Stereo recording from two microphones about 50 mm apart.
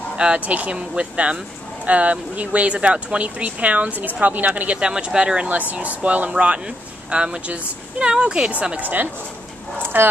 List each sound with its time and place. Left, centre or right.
0.2 s speech: right
5.5 s speech: right
8.7 s a woman's voice: right